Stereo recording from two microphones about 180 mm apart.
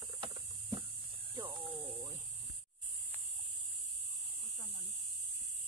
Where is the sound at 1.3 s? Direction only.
20° right (ahead or behind).